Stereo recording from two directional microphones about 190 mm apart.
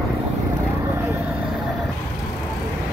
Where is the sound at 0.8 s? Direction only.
15° right (ahead or behind).